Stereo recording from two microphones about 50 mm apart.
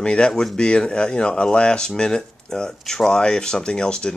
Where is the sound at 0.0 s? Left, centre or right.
Centre.